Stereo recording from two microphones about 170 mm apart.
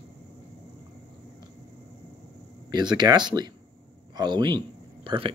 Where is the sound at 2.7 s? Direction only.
25° right (ahead or behind).